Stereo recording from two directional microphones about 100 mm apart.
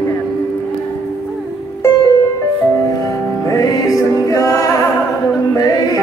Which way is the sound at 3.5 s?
35° left (ahead or behind).